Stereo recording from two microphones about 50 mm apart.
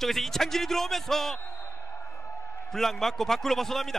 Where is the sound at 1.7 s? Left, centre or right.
Left.